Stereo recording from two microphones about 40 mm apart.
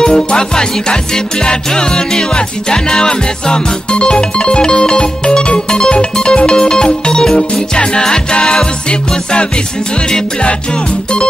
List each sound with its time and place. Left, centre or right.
0.0 s music: left